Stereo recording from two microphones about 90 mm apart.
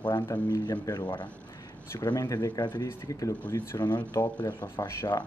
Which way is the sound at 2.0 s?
45° left (ahead or behind).